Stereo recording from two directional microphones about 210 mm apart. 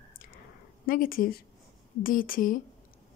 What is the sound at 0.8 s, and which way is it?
Speech, 45° left (ahead or behind).